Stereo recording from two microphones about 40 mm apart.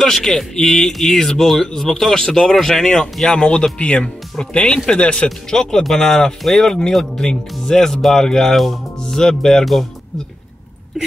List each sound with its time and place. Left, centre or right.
0.0 s speech: centre
5.5 s speech: centre